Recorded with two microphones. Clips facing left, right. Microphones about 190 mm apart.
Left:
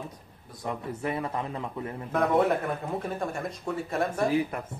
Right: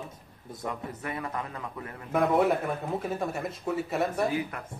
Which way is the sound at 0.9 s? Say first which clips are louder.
Left 4 dB; 25° left (ahead or behind).